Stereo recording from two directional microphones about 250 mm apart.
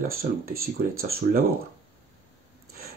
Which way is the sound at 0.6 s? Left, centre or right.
Right.